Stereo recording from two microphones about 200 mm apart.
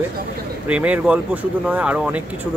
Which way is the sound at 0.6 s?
5° right (ahead or behind).